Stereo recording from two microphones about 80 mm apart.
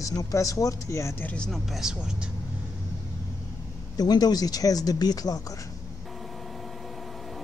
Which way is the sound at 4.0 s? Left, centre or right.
Left.